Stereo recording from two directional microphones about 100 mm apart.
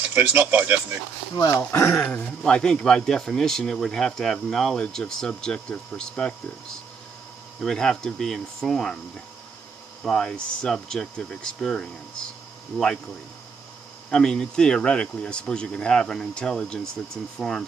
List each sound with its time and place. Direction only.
0.0 s speech: 20° right (ahead or behind)
1.6 s speech: 25° left (ahead or behind); by 6.3 s 10° left (ahead or behind)
7.6 s speech: 5° left (ahead or behind)
10.0 s speech: 5° left (ahead or behind)
14.1 s speech: 5° left (ahead or behind)